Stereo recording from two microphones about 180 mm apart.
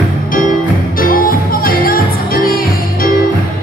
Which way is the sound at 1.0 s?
50° left (ahead or behind).